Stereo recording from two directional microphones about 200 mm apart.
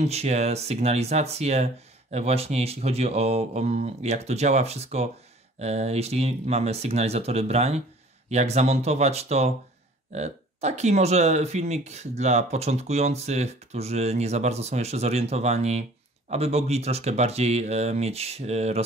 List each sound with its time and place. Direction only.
0.0 s speech: 30° right (ahead or behind)